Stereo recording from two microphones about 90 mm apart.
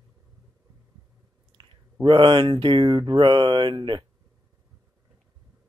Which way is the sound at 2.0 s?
65° right (ahead or behind).